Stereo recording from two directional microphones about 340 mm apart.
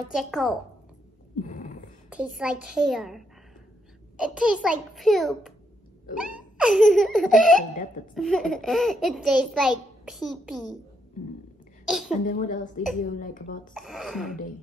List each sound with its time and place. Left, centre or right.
0.1 s a child's voice: centre
1.4 s a sound: left
2.0 s a child's voice: centre
6.6 s a child's voice: centre
11.8 s a sound: centre
12.1 s a woman's voice: left
13.7 s a child's voice: centre